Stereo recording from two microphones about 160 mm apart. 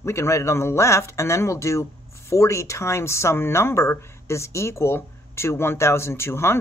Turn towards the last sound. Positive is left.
turn(degrees=15)  # may be behind; listen again after turning